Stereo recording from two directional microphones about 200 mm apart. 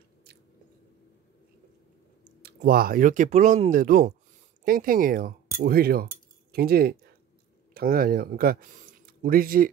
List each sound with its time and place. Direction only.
2.4 s speech: 50° right (ahead or behind)